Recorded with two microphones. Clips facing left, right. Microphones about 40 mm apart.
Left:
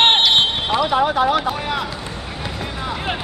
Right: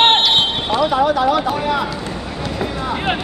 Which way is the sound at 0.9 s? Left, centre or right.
Left.